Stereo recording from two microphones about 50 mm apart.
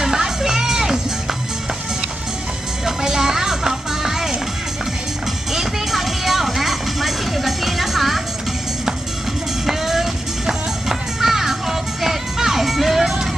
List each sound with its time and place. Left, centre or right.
0.0 s music: centre
2.8 s music: centre
5.5 s music: centre
9.7 s music: centre